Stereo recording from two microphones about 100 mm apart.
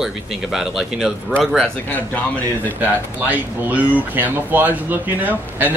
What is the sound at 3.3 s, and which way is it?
Speech, 15° right (ahead or behind).